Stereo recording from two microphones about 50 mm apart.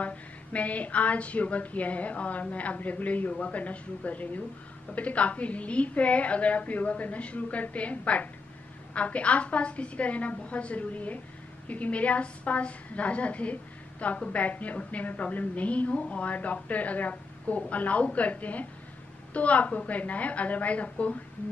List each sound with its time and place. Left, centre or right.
0.0 s a woman's voice: left